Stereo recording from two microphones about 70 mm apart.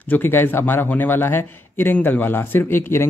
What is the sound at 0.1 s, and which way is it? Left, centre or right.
A man's voice, left.